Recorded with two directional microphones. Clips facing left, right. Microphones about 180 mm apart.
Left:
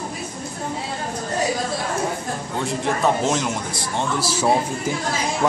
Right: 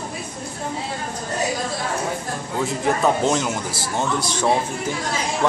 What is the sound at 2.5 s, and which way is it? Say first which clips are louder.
A man's voice: right 2 dB; centre (ahead or behind).